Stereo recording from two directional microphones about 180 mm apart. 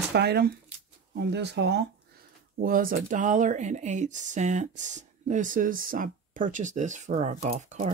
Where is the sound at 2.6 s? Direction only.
50° right (ahead or behind).